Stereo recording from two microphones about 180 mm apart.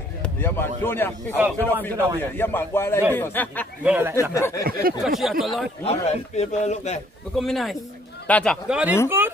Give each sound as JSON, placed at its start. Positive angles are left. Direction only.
{"t": 0.2, "sound": "speech", "side_deg": 10}
{"t": 3.8, "sound": "speech", "side_deg": -10}
{"t": 4.1, "sound": "speech", "side_deg": 15}
{"t": 5.0, "sound": "speech", "side_deg": 0}
{"t": 5.9, "sound": "speech", "side_deg": 35}
{"t": 7.3, "sound": "speech", "side_deg": 0}
{"t": 8.6, "sound": "speech", "side_deg": -5}
{"t": 9.2, "sound": "a sound", "side_deg": -10}